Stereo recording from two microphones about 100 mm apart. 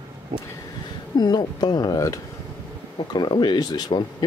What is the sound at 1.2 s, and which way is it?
Speech, 45° left (ahead or behind).